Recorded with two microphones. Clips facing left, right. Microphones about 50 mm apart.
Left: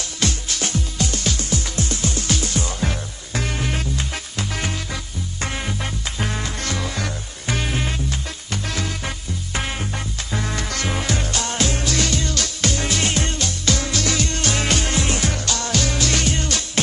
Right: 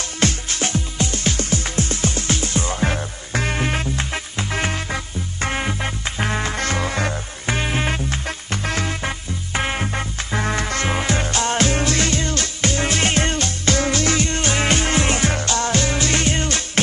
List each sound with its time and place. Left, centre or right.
0.2 s music: right